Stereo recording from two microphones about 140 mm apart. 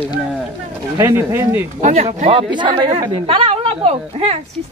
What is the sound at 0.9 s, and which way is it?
Speech, 20° right (ahead or behind).